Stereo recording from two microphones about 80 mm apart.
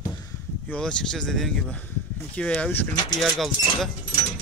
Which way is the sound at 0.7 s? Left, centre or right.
Centre.